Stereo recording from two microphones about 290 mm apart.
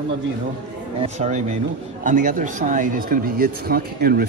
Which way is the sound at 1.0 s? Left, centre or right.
Right.